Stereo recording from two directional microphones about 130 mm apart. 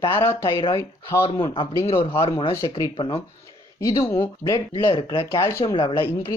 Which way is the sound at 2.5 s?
25° left (ahead or behind).